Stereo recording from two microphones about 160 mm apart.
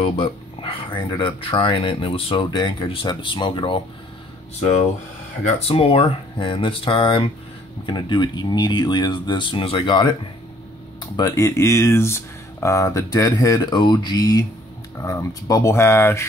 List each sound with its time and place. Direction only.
0.0 s speech: 35° left (ahead or behind)
5.7 s speech: 35° left (ahead or behind)
11.1 s speech: 20° left (ahead or behind)